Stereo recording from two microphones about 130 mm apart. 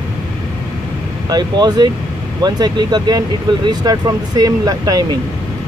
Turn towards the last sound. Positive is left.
turn(degrees=-30)  # may be behind; listen again after turning